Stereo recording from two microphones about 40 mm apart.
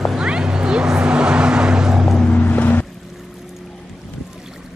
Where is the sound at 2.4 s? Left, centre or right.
Left.